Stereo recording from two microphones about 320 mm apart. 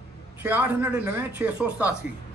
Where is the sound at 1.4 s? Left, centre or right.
Centre.